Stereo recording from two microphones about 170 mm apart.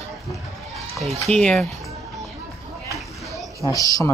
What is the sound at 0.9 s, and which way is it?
Speech, centre (ahead or behind).